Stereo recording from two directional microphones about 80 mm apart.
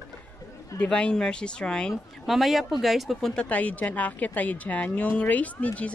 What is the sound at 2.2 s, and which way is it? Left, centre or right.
A woman's voice, centre.